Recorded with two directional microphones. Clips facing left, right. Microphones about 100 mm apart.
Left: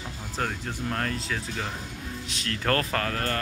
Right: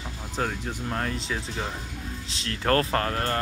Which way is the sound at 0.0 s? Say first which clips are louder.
Right 1 dB; 10° right (ahead or behind).